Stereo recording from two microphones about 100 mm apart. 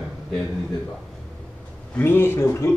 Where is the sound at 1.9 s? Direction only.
20° left (ahead or behind).